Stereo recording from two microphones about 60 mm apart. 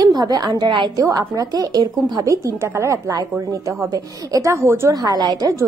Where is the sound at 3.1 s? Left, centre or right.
Right.